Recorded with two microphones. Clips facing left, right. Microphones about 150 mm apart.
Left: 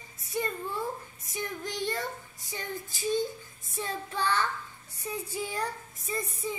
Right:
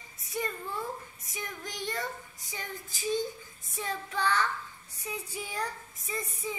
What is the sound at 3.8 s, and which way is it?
Child singing, 30° left (ahead or behind).